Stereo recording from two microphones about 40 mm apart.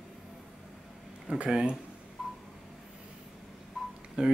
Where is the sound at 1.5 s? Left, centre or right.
Centre.